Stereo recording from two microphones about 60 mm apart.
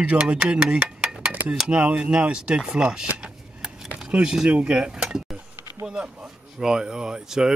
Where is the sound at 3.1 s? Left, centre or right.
Centre.